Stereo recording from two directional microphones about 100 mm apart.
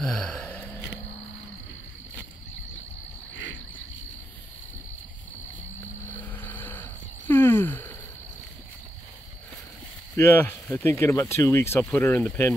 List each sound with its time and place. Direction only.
0.0 s gasp: 5° left (ahead or behind)
6.0 s a sound: 20° left (ahead or behind)
10.1 s speech: 25° left (ahead or behind)